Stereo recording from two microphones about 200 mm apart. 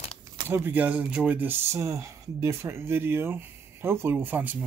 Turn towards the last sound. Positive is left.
turn(degrees=-10)  # may be behind; listen again after turning